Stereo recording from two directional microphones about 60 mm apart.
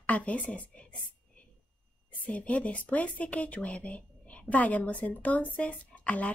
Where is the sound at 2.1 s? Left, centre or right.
Left.